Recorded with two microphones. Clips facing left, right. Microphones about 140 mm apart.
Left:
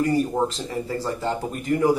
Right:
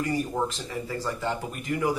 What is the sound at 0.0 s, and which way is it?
Speech, 35° left (ahead or behind).